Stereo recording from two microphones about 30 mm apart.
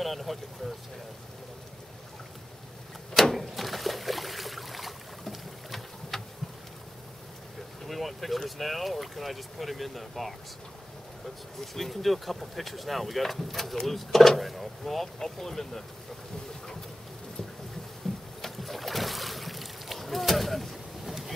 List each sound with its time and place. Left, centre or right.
0.0 s speech: centre
3.3 s a sound: centre
7.8 s speech: centre
11.6 s speech: centre
18.1 s boat: centre
18.4 s boat: centre